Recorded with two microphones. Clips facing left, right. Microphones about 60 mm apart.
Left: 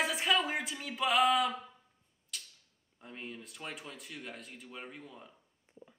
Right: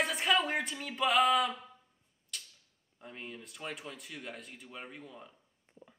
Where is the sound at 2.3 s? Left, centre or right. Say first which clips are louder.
Even; centre.